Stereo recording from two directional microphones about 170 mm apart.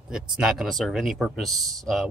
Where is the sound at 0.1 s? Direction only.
5° right (ahead or behind).